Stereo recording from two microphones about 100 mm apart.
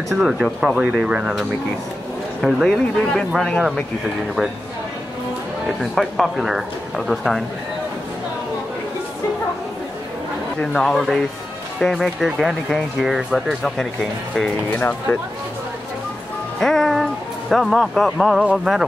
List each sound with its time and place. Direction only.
0.2 s speech: 10° right (ahead or behind)
2.4 s speech: centre (ahead or behind)
5.8 s speech: centre (ahead or behind)
10.6 s speech: 5° left (ahead or behind)
14.3 s speech: 15° left (ahead or behind)
16.5 s music: 5° left (ahead or behind)
18.4 s speech: 10° right (ahead or behind)